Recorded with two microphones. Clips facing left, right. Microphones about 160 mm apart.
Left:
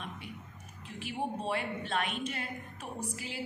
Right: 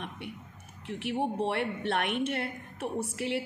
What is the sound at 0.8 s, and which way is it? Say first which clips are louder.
Speech: right 6 dB; 70° right (ahead or behind).